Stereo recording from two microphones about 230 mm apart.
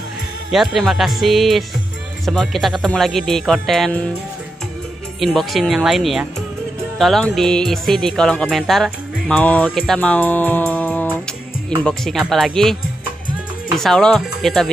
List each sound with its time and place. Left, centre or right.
0.5 s music: centre
5.2 s music: centre
9.7 s speech: centre
11.8 s music: centre
13.7 s music: centre